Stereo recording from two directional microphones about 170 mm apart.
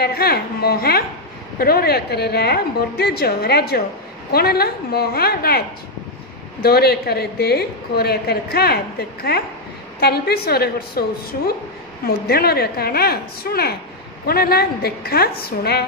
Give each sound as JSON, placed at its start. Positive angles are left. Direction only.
{"t": 0.0, "sound": "a woman's voice", "side_deg": 65}
{"t": 6.6, "sound": "a woman's voice", "side_deg": 65}